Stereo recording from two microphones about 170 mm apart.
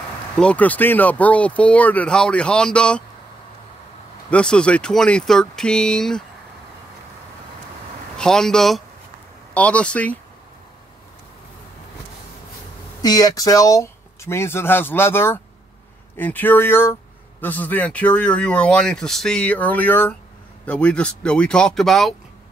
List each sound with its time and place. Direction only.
0.4 s speech: 10° left (ahead or behind)
4.3 s speech: 5° left (ahead or behind)
8.2 s speech: 5° left (ahead or behind)
13.0 s speech: 20° left (ahead or behind); by 22.1 s centre (ahead or behind)